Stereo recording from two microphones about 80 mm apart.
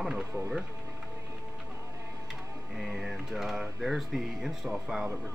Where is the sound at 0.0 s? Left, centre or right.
Centre.